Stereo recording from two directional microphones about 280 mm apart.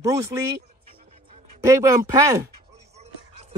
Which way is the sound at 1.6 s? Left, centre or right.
Centre.